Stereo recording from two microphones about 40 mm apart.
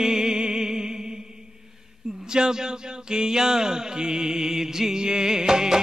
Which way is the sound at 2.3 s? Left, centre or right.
Centre.